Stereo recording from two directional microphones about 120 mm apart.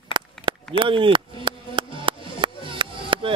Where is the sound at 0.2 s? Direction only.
40° right (ahead or behind).